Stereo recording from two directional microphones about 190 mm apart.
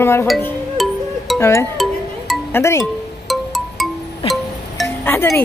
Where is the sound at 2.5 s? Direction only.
15° left (ahead or behind).